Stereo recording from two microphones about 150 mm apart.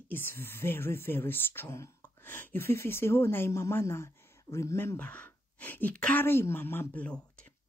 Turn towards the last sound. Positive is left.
turn(degrees=10)  # may be behind; listen again after turning